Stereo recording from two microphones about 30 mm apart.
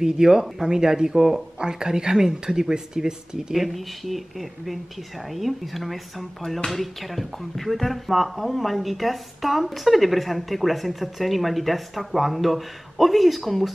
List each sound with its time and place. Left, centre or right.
0.0 s speech: centre
3.6 s speech: centre